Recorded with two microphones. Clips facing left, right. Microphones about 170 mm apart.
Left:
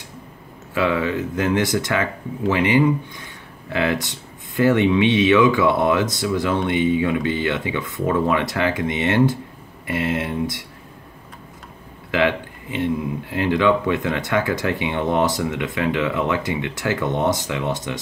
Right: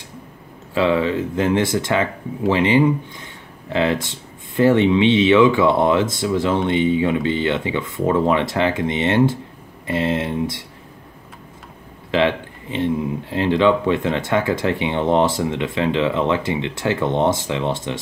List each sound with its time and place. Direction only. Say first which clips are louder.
0.7 s speech: right 3 dB; 25° right (ahead or behind)
12.1 s speech: right 2 dB; 25° right (ahead or behind)